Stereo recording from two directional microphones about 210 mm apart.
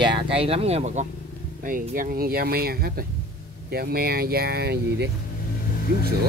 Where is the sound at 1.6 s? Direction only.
40° right (ahead or behind).